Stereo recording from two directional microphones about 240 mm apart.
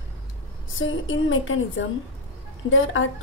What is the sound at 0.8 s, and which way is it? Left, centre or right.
A woman's voice, left.